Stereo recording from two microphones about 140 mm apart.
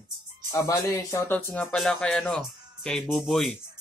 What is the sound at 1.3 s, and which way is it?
Speech, 10° left (ahead or behind).